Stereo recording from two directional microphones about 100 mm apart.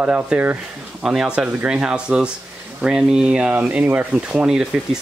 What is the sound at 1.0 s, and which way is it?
Speech, 5° right (ahead or behind).